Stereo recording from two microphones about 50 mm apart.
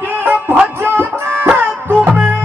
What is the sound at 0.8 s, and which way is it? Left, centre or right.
Music, right.